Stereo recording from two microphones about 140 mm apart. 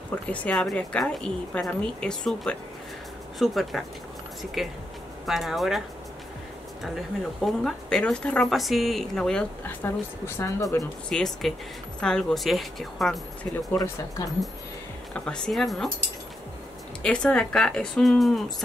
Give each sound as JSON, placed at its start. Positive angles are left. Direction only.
{"t": 0.1, "sound": "a woman's voice", "side_deg": 10}
{"t": 6.8, "sound": "speech", "side_deg": 0}
{"t": 9.8, "sound": "a woman's voice", "side_deg": 20}
{"t": 11.1, "sound": "speech", "side_deg": 5}
{"t": 13.7, "sound": "a woman's voice", "side_deg": 25}
{"t": 15.1, "sound": "speech", "side_deg": 5}
{"t": 17.0, "sound": "speech", "side_deg": 5}